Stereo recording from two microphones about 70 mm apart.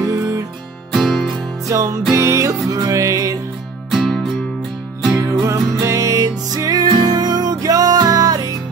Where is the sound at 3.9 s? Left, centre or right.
Centre.